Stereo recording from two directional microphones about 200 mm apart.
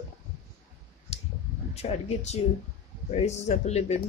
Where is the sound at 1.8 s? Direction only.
35° left (ahead or behind).